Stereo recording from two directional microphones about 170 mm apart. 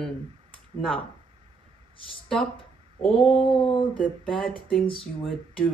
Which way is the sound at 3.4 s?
30° left (ahead or behind).